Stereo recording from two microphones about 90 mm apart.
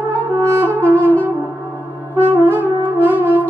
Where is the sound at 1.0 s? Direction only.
20° left (ahead or behind).